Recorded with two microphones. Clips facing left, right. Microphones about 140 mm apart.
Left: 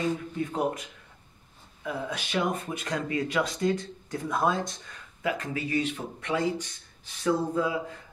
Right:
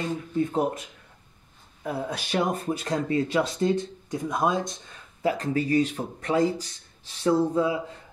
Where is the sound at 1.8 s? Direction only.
40° right (ahead or behind); by 5.0 s 20° right (ahead or behind).